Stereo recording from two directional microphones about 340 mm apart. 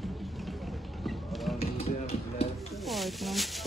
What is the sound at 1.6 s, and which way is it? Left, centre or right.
Music, centre.